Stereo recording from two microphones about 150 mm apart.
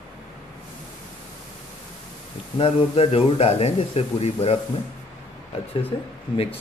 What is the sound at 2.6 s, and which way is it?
Speech, 40° left (ahead or behind).